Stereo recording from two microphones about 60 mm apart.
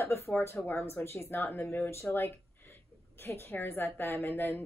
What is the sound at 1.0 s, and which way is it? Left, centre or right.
Speech, left.